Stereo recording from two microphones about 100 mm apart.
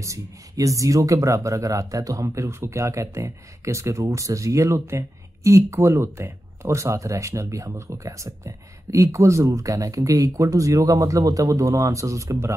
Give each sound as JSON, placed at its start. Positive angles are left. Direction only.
{"t": 0.0, "sound": "speech", "side_deg": -30}